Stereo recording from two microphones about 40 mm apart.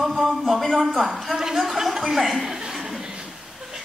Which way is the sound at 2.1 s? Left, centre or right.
Centre.